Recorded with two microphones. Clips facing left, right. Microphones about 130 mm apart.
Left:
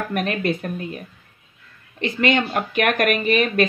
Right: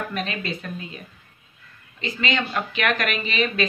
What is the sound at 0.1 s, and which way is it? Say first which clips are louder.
Speech: left 6 dB; 55° left (ahead or behind).